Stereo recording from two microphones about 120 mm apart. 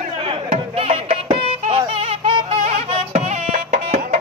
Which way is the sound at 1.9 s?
45° right (ahead or behind).